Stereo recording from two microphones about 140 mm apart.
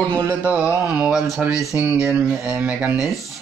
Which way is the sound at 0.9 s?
5° right (ahead or behind).